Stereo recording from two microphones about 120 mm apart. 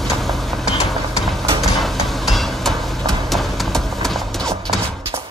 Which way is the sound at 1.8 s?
Centre (ahead or behind).